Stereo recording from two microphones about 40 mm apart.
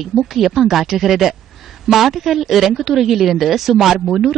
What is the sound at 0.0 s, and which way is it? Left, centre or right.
Speech, centre.